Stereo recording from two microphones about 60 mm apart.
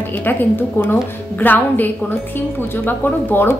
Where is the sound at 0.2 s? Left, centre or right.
Left.